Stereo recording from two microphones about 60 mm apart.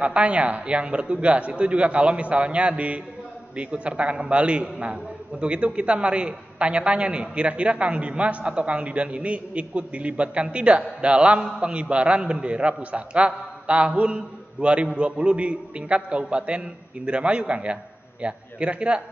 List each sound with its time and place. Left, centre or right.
0.0 s a man's voice: right